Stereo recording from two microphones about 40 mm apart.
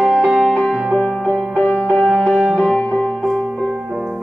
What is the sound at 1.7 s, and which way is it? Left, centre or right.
Music, left.